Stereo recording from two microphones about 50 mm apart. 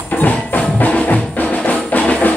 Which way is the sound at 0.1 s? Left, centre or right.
Left.